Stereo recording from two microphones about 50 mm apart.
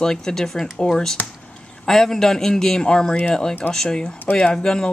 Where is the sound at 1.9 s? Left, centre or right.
Centre.